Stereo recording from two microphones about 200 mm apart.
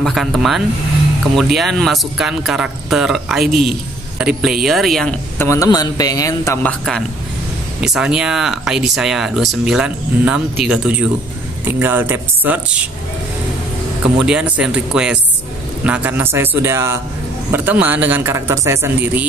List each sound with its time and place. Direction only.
0.0 s speech: centre (ahead or behind)
5.5 s a man's voice: 15° left (ahead or behind); by 12.5 s 10° right (ahead or behind)
14.1 s a man's voice: 5° right (ahead or behind)